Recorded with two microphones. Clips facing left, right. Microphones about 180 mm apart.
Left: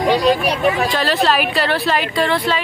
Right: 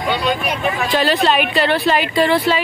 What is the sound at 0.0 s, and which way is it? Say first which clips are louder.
Speech: left 5 dB; 40° left (ahead or behind).